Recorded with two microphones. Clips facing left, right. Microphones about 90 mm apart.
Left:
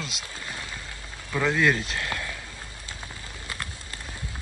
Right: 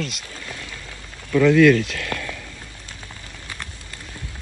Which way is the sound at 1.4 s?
25° left (ahead or behind).